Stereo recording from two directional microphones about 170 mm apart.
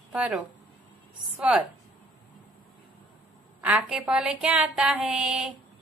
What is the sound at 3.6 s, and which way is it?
Speech, 10° right (ahead or behind).